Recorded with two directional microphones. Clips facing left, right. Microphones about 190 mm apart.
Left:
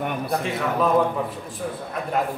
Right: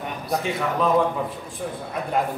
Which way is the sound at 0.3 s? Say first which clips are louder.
Right 4 dB; centre (ahead or behind).